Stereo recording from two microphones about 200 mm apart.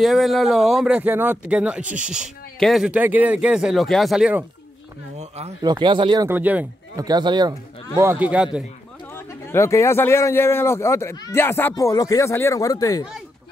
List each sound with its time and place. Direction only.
0.0 s speech: centre (ahead or behind)
5.4 s speech: 20° right (ahead or behind)
6.2 s speech: 10° right (ahead or behind)
7.1 s speech: 20° right (ahead or behind)
9.1 s speech: 15° left (ahead or behind)